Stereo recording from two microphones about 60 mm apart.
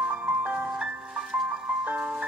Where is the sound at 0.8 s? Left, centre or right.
Centre.